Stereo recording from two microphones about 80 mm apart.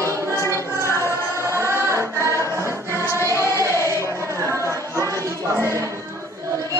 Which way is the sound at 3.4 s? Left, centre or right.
Right.